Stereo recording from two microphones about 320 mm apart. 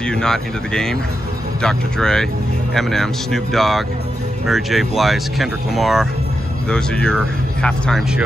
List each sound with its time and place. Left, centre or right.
0.0 s speech: centre